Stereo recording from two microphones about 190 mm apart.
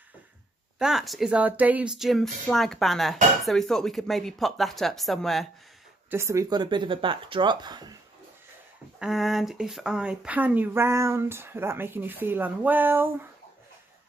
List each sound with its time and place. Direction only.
0.7 s speech: centre (ahead or behind)
6.0 s speech: 15° right (ahead or behind)
9.0 s speech: centre (ahead or behind)